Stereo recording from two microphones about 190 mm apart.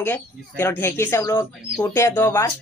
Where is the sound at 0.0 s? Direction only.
10° left (ahead or behind).